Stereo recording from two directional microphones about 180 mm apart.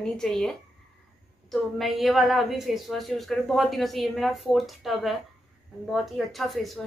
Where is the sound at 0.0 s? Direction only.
5° left (ahead or behind).